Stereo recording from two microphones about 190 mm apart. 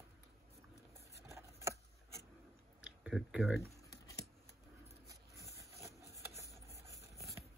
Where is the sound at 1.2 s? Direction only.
15° right (ahead or behind).